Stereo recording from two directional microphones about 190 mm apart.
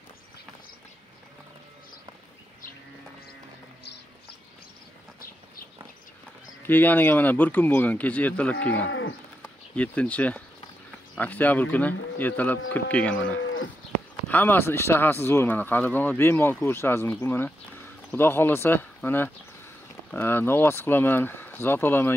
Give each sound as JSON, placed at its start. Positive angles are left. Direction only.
{"t": 6.6, "sound": "speech", "side_deg": 10}
{"t": 8.8, "sound": "livestock", "side_deg": 90}
{"t": 9.4, "sound": "speech", "side_deg": 5}
{"t": 13.4, "sound": "livestock", "side_deg": 90}
{"t": 14.2, "sound": "speech", "side_deg": 10}